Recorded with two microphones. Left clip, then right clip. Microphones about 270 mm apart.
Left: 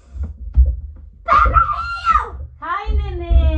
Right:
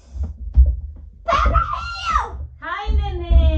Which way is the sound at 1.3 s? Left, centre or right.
Centre.